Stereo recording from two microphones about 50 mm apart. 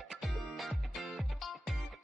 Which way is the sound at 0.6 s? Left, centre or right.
Centre.